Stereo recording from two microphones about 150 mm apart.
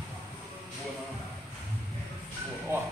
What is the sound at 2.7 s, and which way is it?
Speech, 15° right (ahead or behind).